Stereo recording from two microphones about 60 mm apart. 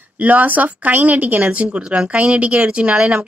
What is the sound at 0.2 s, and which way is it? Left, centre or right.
Speech, right.